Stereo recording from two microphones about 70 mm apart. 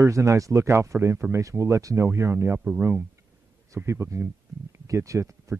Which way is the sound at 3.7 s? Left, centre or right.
Right.